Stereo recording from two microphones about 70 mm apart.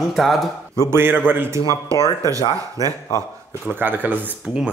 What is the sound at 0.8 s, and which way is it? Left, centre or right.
Speech, right.